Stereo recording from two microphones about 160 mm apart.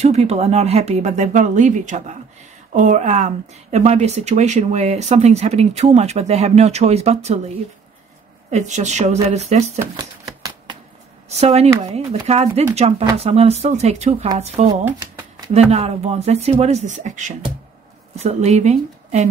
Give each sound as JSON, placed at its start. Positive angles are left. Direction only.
{"t": 0.0, "sound": "speech", "side_deg": -40}
{"t": 9.8, "sound": "shuffling cards", "side_deg": -20}
{"t": 11.2, "sound": "speech", "side_deg": -40}